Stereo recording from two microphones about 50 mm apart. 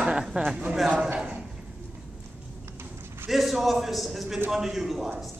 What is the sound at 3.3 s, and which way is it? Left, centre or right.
A man's voice, centre.